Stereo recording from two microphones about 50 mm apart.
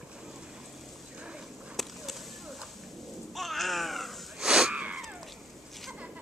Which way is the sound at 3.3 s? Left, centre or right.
Centre.